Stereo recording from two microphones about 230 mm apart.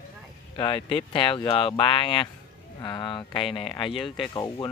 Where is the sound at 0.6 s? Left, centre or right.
Left.